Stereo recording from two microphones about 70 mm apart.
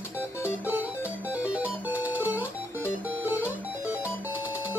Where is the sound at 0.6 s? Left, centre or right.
Right.